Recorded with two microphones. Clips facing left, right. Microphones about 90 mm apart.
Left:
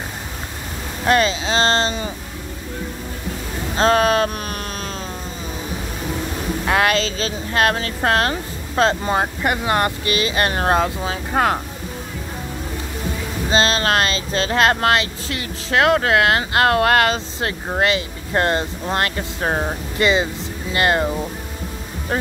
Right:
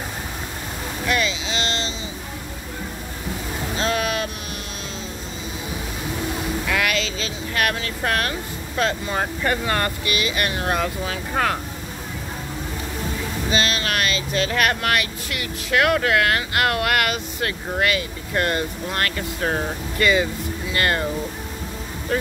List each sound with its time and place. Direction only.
1.0 s speech: 40° left (ahead or behind)
3.7 s hum: 40° left (ahead or behind)
6.6 s speech: 35° left (ahead or behind)
9.4 s speech: 20° left (ahead or behind)
10.0 s speech: 30° left (ahead or behind)
13.5 s speech: 30° left (ahead or behind)
22.1 s speech: 35° left (ahead or behind)